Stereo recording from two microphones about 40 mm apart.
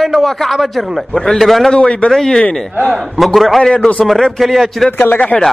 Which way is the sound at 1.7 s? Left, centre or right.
Left.